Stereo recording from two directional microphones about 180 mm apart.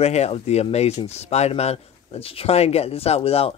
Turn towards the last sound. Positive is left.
turn(degrees=35)  # may be behind; listen again after turning